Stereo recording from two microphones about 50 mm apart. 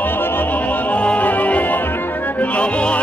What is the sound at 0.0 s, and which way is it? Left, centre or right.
Music, left.